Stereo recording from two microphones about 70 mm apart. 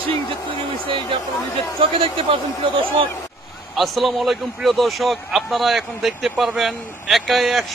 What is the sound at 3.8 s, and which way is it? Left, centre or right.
A man's voice, centre.